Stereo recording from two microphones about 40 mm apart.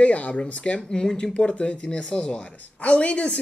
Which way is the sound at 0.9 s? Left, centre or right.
Centre.